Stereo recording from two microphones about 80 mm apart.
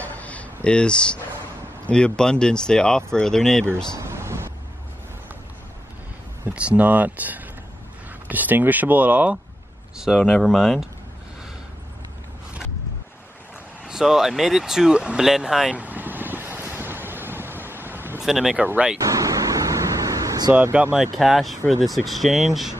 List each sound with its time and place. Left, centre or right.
0.0 s a sound: centre
0.7 s speech: centre
3.6 s a sound: right
6.5 s speech: centre
10.1 s speech: centre
13.8 s speech: centre
15.7 s vehicle: right
18.2 s speech: centre
18.9 s vehicle: right
20.9 s speech: centre